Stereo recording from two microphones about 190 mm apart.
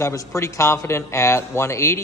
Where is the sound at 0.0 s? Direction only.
15° left (ahead or behind).